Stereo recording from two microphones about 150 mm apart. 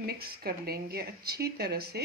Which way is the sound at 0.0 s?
90° right.